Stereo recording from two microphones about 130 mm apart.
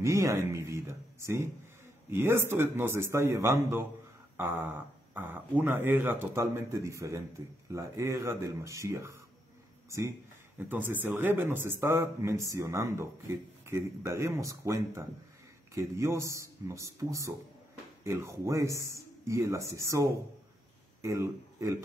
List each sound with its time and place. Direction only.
0.0 s a man's voice: 20° right (ahead or behind)